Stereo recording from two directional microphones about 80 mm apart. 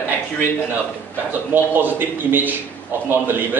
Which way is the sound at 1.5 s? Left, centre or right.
Right.